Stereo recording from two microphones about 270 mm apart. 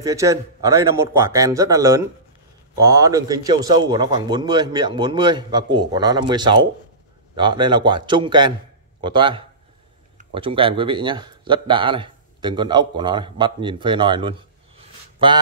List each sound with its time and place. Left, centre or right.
0.0 s speech: centre